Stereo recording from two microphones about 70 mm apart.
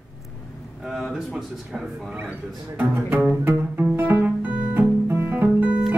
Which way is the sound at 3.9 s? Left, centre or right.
Right.